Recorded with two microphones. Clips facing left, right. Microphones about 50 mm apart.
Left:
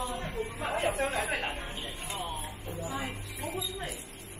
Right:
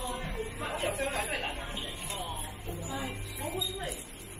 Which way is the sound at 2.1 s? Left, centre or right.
Left.